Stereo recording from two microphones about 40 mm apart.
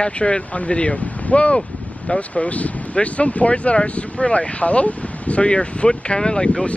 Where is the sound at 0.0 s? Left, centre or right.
Left.